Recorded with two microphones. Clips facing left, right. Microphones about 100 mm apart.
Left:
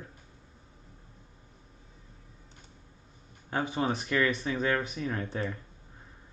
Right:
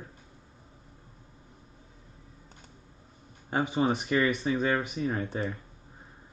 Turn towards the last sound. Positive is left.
turn(degrees=-10)  # may be behind; listen again after turning